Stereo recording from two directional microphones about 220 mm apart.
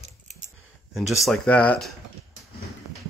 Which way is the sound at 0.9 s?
Centre (ahead or behind).